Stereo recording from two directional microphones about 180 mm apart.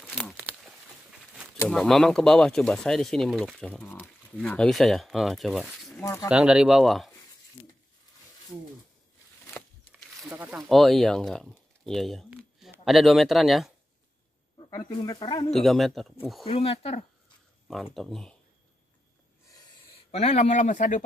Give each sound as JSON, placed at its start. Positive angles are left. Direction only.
{"t": 0.0, "sound": "a sound", "side_deg": 5}
{"t": 1.7, "sound": "speech", "side_deg": 0}
{"t": 5.9, "sound": "speech", "side_deg": 15}
{"t": 6.2, "sound": "speech", "side_deg": -5}
{"t": 10.2, "sound": "speech", "side_deg": -10}
{"t": 10.7, "sound": "speech", "side_deg": 0}
{"t": 14.9, "sound": "speech", "side_deg": 25}
{"t": 15.5, "sound": "speech", "side_deg": 0}
{"t": 16.4, "sound": "speech", "side_deg": 35}
{"t": 17.9, "sound": "speech", "side_deg": 0}
{"t": 20.1, "sound": "speech", "side_deg": 40}